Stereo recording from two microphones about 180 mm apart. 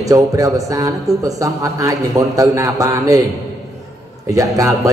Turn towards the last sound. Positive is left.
turn(degrees=-20)  # may be behind; listen again after turning